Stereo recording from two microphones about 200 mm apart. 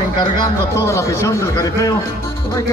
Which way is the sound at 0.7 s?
15° left (ahead or behind).